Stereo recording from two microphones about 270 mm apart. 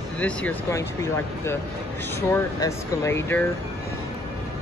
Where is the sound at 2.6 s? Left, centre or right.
Centre.